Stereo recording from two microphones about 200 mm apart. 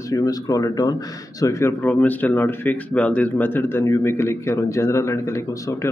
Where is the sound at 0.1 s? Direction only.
15° left (ahead or behind).